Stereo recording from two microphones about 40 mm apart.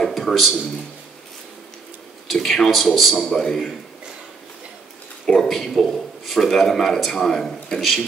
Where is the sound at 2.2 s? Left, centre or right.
Centre.